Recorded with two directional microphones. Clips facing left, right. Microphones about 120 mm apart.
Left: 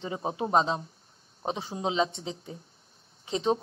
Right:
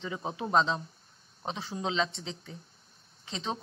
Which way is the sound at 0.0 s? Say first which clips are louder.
Left 4 dB; 35° left (ahead or behind).